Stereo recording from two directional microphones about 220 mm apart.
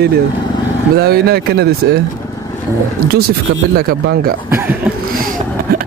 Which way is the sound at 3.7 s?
40° right (ahead or behind).